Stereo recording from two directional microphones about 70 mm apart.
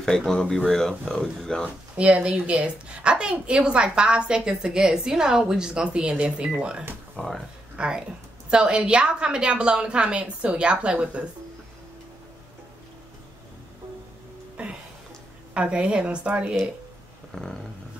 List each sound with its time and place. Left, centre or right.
0.3 s speech: centre
2.0 s a woman's voice: centre
7.2 s speech: centre
7.7 s a woman's voice: centre
14.6 s music: centre
15.5 s a woman's voice: centre
17.3 s a sound: centre